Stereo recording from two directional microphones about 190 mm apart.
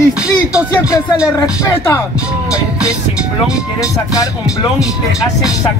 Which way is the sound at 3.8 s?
15° left (ahead or behind).